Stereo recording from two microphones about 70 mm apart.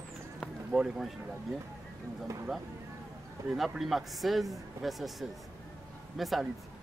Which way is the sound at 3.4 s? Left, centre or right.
Right.